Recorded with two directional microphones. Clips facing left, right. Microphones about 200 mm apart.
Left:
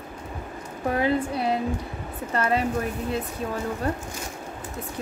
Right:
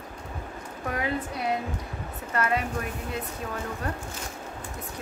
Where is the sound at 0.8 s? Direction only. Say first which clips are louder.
Left 7 dB; 30° left (ahead or behind).